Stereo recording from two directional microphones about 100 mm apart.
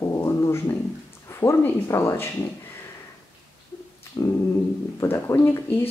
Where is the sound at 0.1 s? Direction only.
25° left (ahead or behind).